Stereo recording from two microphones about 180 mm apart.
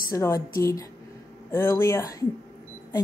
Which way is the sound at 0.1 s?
15° left (ahead or behind).